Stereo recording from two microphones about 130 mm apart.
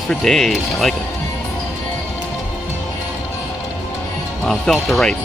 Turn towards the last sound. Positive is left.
turn(degrees=5)  # may be behind; listen again after turning